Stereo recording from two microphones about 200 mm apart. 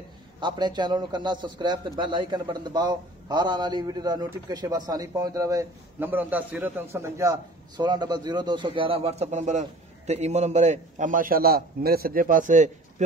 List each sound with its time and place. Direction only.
0.4 s a man's voice: 20° right (ahead or behind); by 12.7 s 40° right (ahead or behind)